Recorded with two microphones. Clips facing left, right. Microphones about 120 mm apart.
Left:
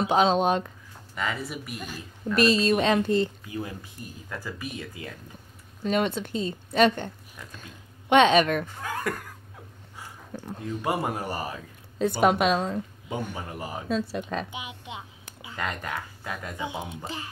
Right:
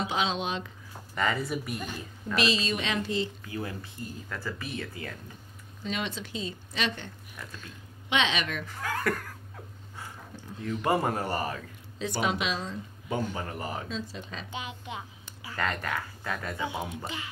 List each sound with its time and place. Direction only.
0.0 s speech: 45° left (ahead or behind)
1.1 s speech: centre (ahead or behind)
2.3 s speech: 50° left (ahead or behind)
3.4 s speech: 20° left (ahead or behind)
5.9 s speech: 50° left (ahead or behind)
8.1 s speech: 50° left (ahead or behind)
8.6 s speech: 20° left (ahead or behind)
10.3 s a sound: 55° left (ahead or behind)
10.8 s speech: 15° left (ahead or behind)
12.0 s speech: 50° left (ahead or behind)
13.3 s speech: 10° left (ahead or behind)
13.8 s speech: 55° left (ahead or behind)
14.5 s speech: 15° left (ahead or behind)
17.0 s speech: 35° left (ahead or behind)